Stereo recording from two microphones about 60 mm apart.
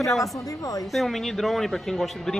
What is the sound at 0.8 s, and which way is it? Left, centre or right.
Speech, centre.